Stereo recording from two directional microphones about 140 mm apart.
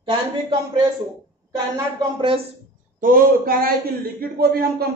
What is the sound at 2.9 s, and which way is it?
A man's voice, 85° right.